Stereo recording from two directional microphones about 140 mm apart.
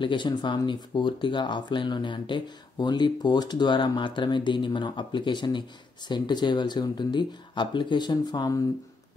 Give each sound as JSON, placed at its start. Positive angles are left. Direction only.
{"t": 0.0, "sound": "speech", "side_deg": 35}